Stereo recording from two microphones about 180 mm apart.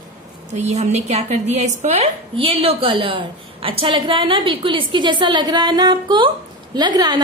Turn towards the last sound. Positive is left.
turn(degrees=-25)  # may be behind; listen again after turning